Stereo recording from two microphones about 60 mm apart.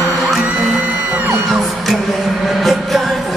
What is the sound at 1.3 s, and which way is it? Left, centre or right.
Music, centre.